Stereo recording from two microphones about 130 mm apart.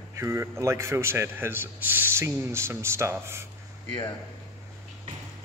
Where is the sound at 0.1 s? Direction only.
20° right (ahead or behind).